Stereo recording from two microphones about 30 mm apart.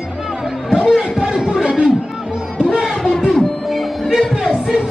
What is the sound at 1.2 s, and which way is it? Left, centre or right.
Music, right.